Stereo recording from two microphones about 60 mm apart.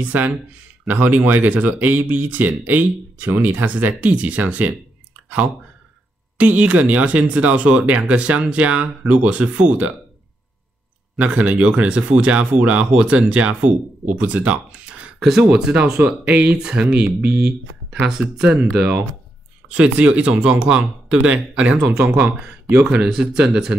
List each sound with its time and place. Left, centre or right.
0.0 s speech: right
6.3 s speech: right
11.1 s speech: right
15.1 s speech: centre
19.7 s speech: centre